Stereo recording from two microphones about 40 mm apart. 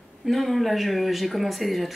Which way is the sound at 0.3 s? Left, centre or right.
Centre.